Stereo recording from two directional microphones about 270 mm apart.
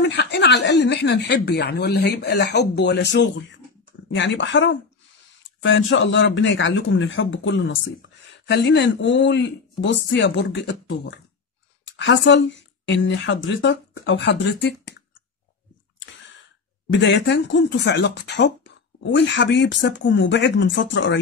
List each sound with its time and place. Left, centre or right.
0.0 s a man's voice: left
16.9 s a man's voice: left